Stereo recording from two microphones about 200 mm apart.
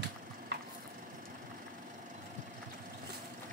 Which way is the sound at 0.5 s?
55° right (ahead or behind).